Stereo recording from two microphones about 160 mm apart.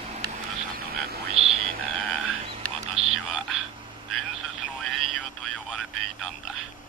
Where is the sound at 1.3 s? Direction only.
40° right (ahead or behind).